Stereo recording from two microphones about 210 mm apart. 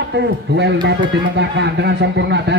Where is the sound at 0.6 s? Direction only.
55° right (ahead or behind).